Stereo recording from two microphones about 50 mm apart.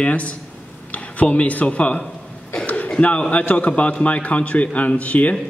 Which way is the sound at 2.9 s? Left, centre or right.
Left.